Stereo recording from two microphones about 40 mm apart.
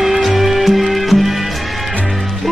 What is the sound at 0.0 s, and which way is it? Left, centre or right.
Music, centre.